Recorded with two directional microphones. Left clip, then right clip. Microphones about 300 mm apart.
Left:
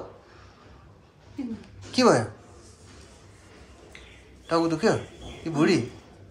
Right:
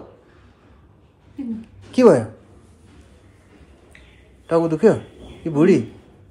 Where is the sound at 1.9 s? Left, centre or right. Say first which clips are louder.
Right 7 dB; centre.